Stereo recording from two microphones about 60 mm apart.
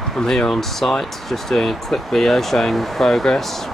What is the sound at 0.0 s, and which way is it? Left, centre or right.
Speech, centre.